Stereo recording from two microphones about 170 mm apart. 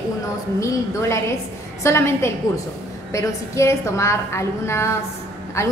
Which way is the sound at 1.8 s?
15° left (ahead or behind).